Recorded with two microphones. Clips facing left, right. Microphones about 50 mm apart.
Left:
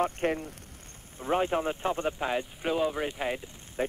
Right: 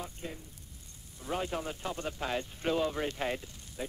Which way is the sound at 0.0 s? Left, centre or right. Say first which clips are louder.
Left 14 dB; left.